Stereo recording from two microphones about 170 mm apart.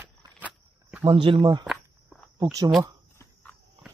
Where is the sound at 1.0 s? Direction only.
30° right (ahead or behind).